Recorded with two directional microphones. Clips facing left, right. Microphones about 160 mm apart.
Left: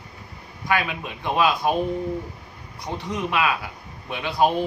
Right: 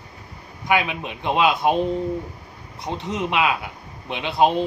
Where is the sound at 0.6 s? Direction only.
20° right (ahead or behind).